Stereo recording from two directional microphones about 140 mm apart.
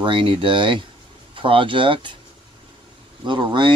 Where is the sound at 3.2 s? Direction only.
35° right (ahead or behind).